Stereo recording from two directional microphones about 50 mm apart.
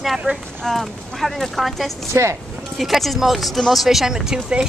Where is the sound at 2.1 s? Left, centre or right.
Right.